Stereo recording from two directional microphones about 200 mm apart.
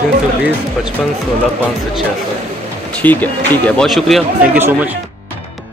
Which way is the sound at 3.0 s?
10° left (ahead or behind).